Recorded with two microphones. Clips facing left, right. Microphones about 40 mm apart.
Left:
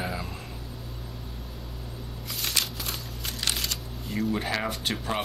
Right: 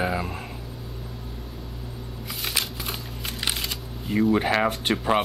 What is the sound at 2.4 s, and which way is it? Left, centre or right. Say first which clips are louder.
Shuffling cards: right 1 dB; centre.